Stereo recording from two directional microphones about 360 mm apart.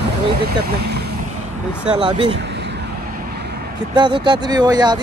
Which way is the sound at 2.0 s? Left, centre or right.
Centre.